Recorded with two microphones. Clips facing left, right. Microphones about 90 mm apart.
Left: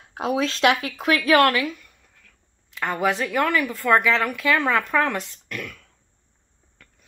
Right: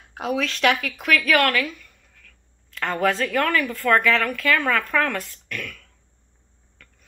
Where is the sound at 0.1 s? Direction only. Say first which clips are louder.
Left 2 dB; 30° left (ahead or behind).